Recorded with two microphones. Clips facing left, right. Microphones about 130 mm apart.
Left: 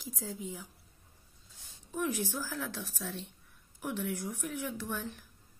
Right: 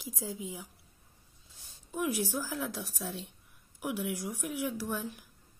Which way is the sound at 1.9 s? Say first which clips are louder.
Right 2 dB; 10° right (ahead or behind).